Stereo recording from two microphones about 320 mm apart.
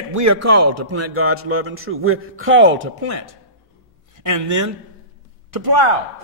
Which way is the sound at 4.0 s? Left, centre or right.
Right.